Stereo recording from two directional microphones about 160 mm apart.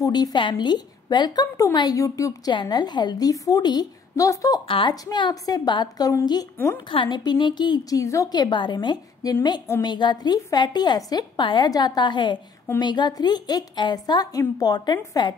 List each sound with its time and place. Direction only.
0.0 s a woman's voice: 25° left (ahead or behind)